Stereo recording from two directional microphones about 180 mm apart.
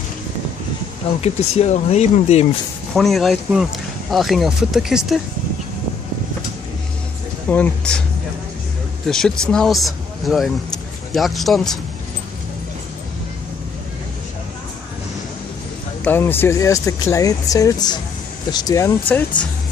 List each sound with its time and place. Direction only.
1.2 s speech: 35° left (ahead or behind)
2.9 s speech: centre (ahead or behind)
7.4 s speech: 10° left (ahead or behind)
9.0 s speech: centre (ahead or behind)
16.0 s speech: 10° left (ahead or behind)